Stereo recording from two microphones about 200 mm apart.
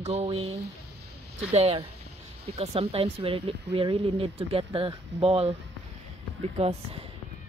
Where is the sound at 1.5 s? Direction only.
30° right (ahead or behind).